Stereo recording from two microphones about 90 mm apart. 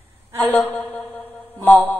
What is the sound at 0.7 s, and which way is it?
Mantra, 15° left (ahead or behind).